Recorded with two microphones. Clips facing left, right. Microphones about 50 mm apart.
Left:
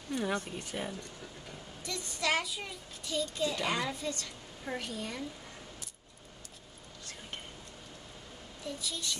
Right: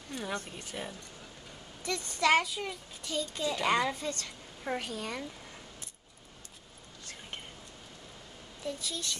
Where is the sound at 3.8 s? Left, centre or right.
Right.